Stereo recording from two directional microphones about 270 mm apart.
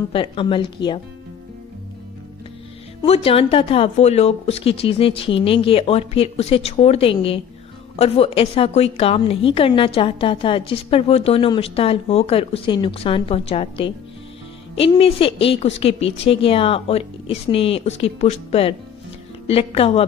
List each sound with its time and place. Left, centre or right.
0.1 s a woman's voice: centre
3.3 s a woman's voice: left